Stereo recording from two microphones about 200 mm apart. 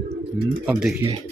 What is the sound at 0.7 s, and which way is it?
Speech, 5° right (ahead or behind).